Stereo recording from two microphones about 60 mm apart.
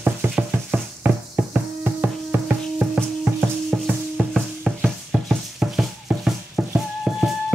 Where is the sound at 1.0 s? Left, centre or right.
Right.